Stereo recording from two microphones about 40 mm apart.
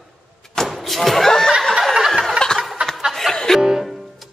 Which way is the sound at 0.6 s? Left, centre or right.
Centre.